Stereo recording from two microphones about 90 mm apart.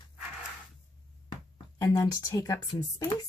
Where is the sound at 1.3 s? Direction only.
40° left (ahead or behind).